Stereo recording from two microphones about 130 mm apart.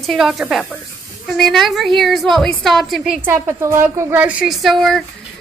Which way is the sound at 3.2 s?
20° right (ahead or behind).